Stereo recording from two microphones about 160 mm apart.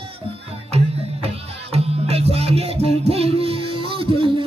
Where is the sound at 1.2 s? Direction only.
40° right (ahead or behind).